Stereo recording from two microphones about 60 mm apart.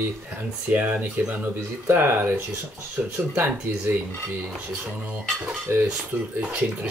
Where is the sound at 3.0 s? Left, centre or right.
Right.